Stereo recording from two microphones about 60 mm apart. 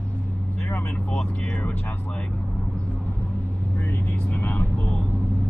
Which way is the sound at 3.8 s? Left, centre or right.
Left.